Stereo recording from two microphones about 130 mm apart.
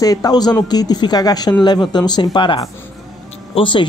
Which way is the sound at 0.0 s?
30° left (ahead or behind).